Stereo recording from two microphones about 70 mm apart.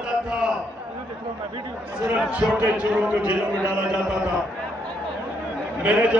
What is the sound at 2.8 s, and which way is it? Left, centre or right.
Speech, centre.